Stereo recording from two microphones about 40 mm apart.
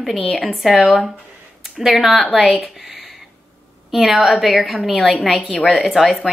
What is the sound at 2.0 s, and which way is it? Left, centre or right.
Speech, centre.